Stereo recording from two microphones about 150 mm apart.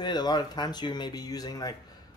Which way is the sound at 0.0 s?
30° left (ahead or behind).